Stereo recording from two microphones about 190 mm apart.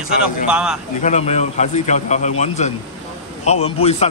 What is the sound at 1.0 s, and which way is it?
A man's voice, 35° left (ahead or behind).